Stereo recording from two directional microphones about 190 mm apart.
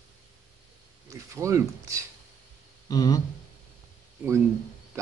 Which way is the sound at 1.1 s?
15° right (ahead or behind).